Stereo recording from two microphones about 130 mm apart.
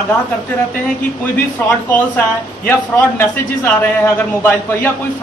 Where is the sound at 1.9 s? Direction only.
15° left (ahead or behind).